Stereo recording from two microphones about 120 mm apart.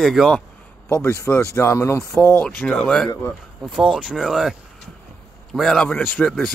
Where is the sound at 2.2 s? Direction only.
10° left (ahead or behind).